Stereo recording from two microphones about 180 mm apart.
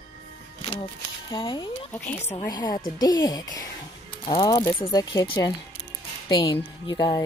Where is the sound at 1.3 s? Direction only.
25° left (ahead or behind).